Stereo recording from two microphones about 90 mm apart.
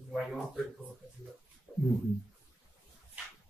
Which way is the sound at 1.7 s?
5° right (ahead or behind).